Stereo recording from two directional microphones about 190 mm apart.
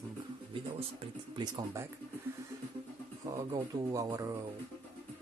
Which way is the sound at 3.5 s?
20° right (ahead or behind).